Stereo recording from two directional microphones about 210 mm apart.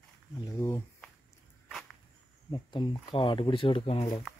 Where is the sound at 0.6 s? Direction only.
10° left (ahead or behind).